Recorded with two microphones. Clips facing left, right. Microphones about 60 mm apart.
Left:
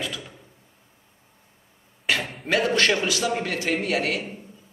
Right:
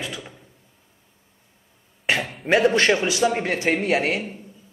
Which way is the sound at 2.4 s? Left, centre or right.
Right.